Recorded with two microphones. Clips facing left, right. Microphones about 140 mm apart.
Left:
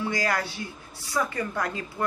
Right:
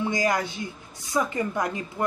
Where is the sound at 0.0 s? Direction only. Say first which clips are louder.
Right 3 dB; 20° right (ahead or behind).